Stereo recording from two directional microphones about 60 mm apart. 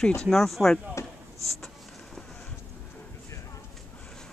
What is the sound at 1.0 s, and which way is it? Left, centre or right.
Basketball bounce, left.